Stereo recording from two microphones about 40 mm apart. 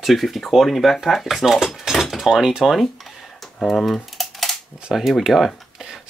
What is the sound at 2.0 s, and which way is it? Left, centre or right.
Dishes, centre.